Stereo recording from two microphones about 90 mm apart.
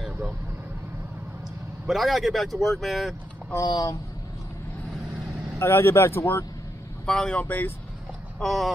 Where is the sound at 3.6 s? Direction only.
50° left (ahead or behind).